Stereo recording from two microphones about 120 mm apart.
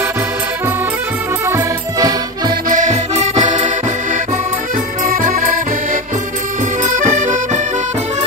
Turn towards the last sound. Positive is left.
turn(degrees=-90)